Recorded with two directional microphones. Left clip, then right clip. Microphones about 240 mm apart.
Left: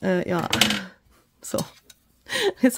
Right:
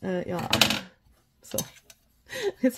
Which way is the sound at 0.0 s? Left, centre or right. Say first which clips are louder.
Left 7 dB; left.